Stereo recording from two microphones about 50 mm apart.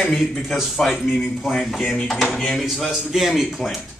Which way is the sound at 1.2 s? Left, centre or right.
Centre.